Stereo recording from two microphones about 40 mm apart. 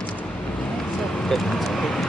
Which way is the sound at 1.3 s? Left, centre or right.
Centre.